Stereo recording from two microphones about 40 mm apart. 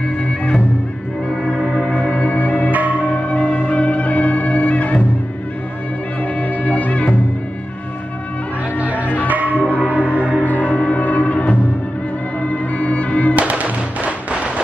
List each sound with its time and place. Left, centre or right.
2.0 s music: left
2.4 s music: left
2.7 s church bell: right
3.0 s music: left
6.2 s music: left
8.7 s music: right
9.0 s music: left
9.3 s music: right
10.4 s music: left
13.4 s music: right